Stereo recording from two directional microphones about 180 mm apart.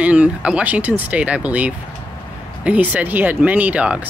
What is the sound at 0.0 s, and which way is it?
Speech, 5° right (ahead or behind).